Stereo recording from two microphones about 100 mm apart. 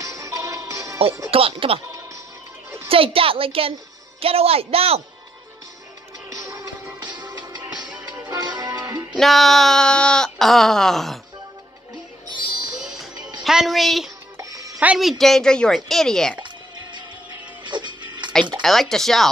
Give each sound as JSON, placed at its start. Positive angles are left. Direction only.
{"t": 0.0, "sound": "music", "side_deg": -35}
{"t": 1.3, "sound": "a woman's voice", "side_deg": -70}
{"t": 2.9, "sound": "a woman's voice", "side_deg": -70}
{"t": 6.5, "sound": "music", "side_deg": -40}
{"t": 9.2, "sound": "speech", "side_deg": 0}
{"t": 12.7, "sound": "music", "side_deg": 0}
{"t": 13.4, "sound": "a woman's voice", "side_deg": 0}
{"t": 14.3, "sound": "music", "side_deg": -35}
{"t": 15.0, "sound": "speech", "side_deg": 0}
{"t": 17.6, "sound": "music", "side_deg": -50}
{"t": 18.6, "sound": "speech", "side_deg": 5}